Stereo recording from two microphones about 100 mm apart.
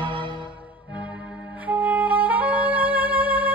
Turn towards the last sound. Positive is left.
turn(degrees=-15)  # may be behind; listen again after turning